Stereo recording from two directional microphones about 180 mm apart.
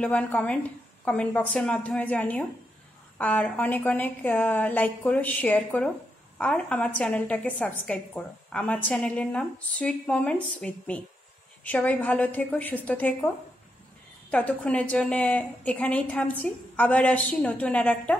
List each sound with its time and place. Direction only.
0.0 s a woman's voice: 5° left (ahead or behind)
14.3 s a woman's voice: 5° left (ahead or behind)